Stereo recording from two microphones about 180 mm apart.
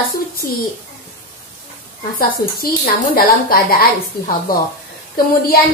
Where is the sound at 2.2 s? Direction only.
55° left (ahead or behind).